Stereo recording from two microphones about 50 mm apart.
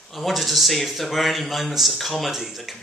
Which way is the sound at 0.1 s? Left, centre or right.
Centre.